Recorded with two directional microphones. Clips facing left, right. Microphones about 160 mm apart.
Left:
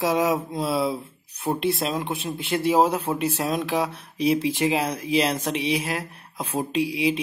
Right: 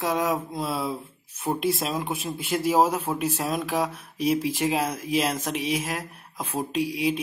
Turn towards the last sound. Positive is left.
turn(degrees=0)  # may be behind; listen again after turning